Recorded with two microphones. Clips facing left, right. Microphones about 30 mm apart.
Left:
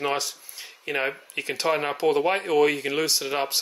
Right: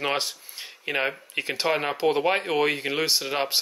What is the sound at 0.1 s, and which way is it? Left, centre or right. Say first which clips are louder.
Speech: even; right.